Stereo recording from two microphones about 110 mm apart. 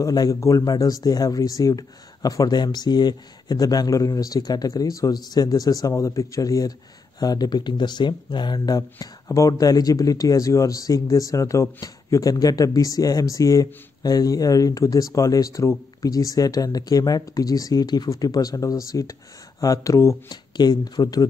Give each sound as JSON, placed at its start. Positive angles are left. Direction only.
{"t": 0.0, "sound": "speech", "side_deg": 35}
{"t": 20.5, "sound": "speech", "side_deg": 40}